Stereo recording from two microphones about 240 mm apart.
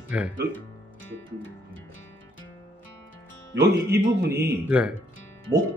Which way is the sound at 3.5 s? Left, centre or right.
Right.